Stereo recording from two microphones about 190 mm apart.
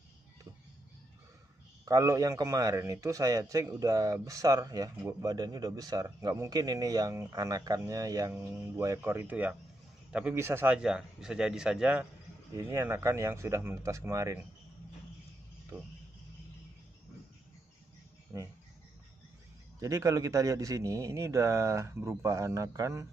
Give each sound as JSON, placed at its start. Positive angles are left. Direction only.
{"t": 1.9, "sound": "a man's voice", "side_deg": -15}
{"t": 15.7, "sound": "a man's voice", "side_deg": -10}
{"t": 18.3, "sound": "a man's voice", "side_deg": -15}
{"t": 19.8, "sound": "a man's voice", "side_deg": -15}